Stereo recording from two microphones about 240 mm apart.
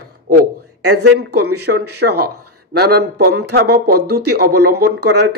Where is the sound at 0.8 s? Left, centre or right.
Right.